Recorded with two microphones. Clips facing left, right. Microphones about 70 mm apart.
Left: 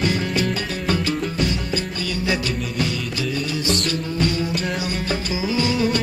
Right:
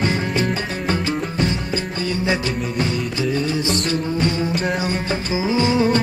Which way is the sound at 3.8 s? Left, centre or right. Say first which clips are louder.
Right 2 dB; right.